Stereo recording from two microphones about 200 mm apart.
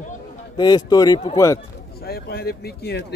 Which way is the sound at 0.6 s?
20° left (ahead or behind).